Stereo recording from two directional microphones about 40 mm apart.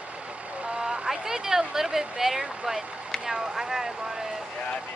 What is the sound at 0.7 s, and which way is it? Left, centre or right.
A woman's voice, centre.